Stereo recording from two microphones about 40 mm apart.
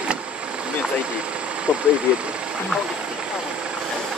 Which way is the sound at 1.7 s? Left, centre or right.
Right.